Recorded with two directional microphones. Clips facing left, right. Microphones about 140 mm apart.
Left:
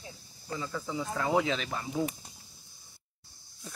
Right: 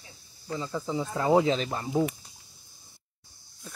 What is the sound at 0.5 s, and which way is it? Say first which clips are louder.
Speech: right 4 dB; 25° right (ahead or behind).